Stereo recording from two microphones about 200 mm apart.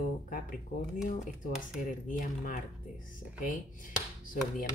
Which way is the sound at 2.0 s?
40° left (ahead or behind).